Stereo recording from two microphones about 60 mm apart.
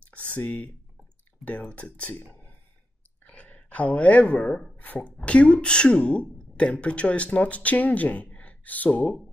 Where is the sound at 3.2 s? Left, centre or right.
Left.